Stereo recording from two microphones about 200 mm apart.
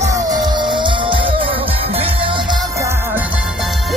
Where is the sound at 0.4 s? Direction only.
20° right (ahead or behind).